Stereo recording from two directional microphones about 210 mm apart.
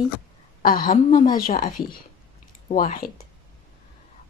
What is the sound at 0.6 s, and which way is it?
A woman's voice, 40° left (ahead or behind).